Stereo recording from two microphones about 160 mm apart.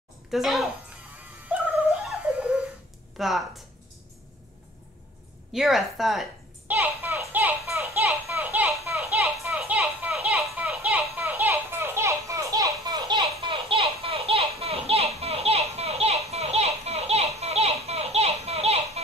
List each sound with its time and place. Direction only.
0.3 s a woman's voice: centre (ahead or behind)
1.1 s music: 10° right (ahead or behind)
3.2 s a woman's voice: centre (ahead or behind)
5.5 s a woman's voice: centre (ahead or behind)
6.7 s a sound: 10° right (ahead or behind)
9.5 s children playing: 5° right (ahead or behind); by 15.0 s 40° right (ahead or behind)
15.1 s a sound: 40° right (ahead or behind)